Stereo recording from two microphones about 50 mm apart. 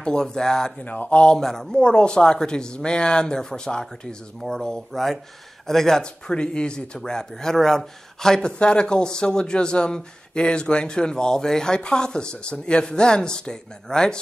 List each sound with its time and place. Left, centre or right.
0.0 s speech: centre
0.8 s speech: left
1.2 s speech: centre